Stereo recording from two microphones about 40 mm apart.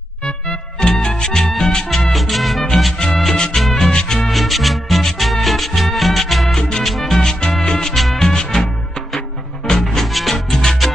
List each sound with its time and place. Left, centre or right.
0.2 s music: centre
1.4 s music: centre
4.3 s music: centre
7.2 s music: centre
7.9 s music: centre
8.3 s music: centre
9.8 s music: centre